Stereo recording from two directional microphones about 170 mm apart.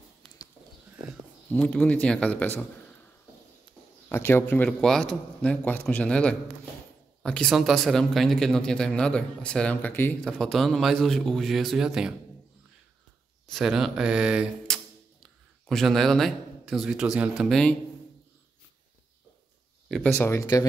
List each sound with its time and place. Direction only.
1.5 s speech: 5° left (ahead or behind)
4.1 s speech: 15° left (ahead or behind); by 12.2 s 5° right (ahead or behind)
13.5 s speech: centre (ahead or behind)
19.9 s speech: 10° left (ahead or behind)